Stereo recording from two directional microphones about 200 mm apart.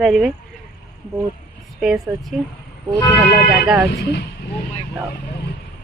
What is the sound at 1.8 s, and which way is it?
Speech, centre (ahead or behind).